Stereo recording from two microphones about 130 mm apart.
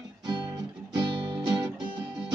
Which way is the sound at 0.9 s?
40° right (ahead or behind).